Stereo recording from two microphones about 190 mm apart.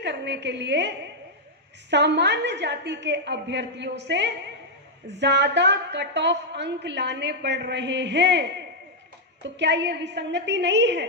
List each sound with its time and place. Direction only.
0.0 s a woman's voice: 65° right (ahead or behind)